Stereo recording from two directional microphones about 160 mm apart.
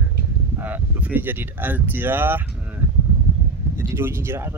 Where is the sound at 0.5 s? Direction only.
10° right (ahead or behind).